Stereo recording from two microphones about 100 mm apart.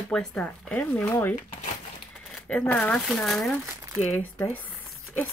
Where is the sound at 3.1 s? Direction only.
5° left (ahead or behind).